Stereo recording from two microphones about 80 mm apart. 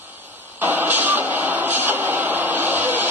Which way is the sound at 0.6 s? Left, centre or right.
Right.